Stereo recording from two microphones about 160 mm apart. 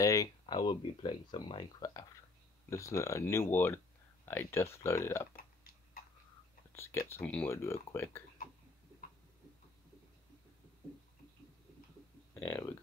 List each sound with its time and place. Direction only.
0.0 s speech: 20° left (ahead or behind)
7.1 s speech: 5° left (ahead or behind)
12.4 s speech: 15° left (ahead or behind)